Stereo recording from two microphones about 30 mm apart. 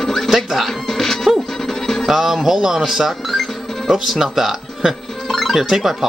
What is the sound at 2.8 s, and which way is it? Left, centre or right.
Speech, centre.